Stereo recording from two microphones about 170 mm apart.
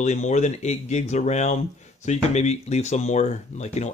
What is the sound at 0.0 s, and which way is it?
A man's voice, 45° left (ahead or behind).